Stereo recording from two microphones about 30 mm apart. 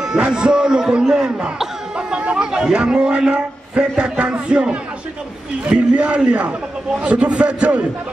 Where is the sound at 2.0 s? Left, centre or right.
Right.